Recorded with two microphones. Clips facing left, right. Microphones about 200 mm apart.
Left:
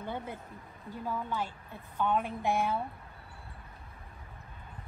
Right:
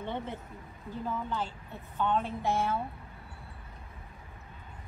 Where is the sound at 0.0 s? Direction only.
10° left (ahead or behind).